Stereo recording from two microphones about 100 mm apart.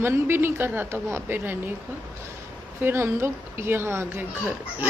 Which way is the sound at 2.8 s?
25° right (ahead or behind).